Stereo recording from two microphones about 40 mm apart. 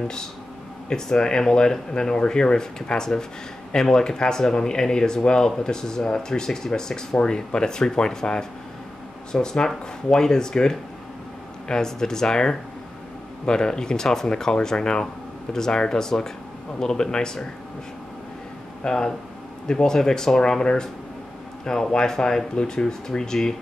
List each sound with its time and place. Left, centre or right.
0.8 s speech: centre
18.9 s speech: centre